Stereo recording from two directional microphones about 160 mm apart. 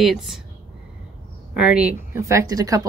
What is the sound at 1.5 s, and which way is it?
Speech, 5° right (ahead or behind).